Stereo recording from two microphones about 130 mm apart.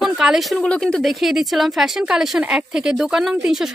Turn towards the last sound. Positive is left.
turn(degrees=-5)  # may be behind; listen again after turning